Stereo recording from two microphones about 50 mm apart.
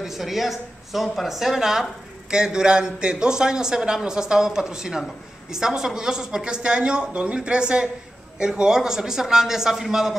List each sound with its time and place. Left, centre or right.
0.0 s a man's voice: centre